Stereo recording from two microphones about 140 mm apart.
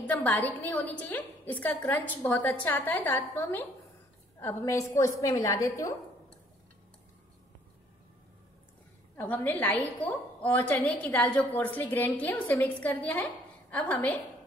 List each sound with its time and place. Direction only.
0.0 s a woman's voice: 10° left (ahead or behind)
9.1 s a woman's voice: 15° left (ahead or behind)